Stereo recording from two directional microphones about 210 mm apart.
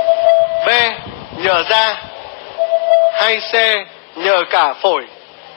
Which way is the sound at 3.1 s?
50° left (ahead or behind).